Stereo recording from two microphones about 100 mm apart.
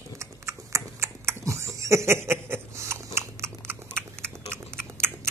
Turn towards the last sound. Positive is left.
turn(degrees=-25)  # may be behind; listen again after turning